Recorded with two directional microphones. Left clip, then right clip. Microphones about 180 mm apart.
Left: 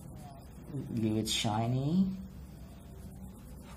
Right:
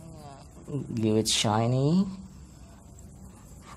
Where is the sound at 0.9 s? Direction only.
45° right (ahead or behind).